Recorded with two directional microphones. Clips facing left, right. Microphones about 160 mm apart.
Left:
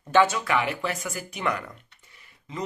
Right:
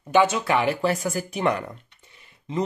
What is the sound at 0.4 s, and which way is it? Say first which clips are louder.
Speech: right 4 dB; 30° right (ahead or behind).